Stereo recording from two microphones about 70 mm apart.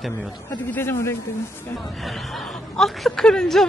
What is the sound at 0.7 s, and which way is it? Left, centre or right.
Speech, left.